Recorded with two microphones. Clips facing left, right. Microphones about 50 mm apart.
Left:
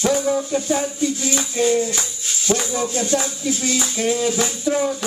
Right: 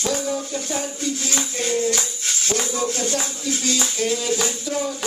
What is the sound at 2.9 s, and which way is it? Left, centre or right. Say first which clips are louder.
Speech: left 3 dB; left.